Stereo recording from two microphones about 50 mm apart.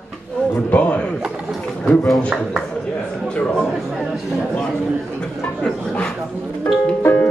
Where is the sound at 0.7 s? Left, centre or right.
Left.